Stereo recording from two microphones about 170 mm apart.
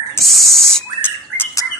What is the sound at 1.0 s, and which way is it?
Bird, 10° left (ahead or behind).